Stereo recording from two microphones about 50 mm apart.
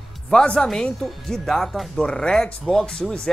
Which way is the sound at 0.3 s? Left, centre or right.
Centre.